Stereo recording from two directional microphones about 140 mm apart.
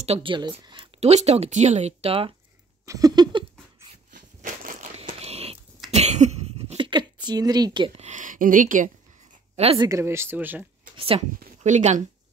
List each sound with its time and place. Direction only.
0.0 s speech: 40° right (ahead or behind)
2.8 s a sound: 25° right (ahead or behind)
4.4 s crushing: 65° right (ahead or behind)
5.0 s biting: 45° right (ahead or behind)
5.9 s a sound: 55° right (ahead or behind)
6.8 s a sound: 35° right (ahead or behind)
7.2 s speech: 30° right (ahead or behind)
8.0 s speech: 65° right (ahead or behind)
9.8 s speech: 20° right (ahead or behind)
11.0 s speech: 40° right (ahead or behind)
11.3 s speech: 60° right (ahead or behind)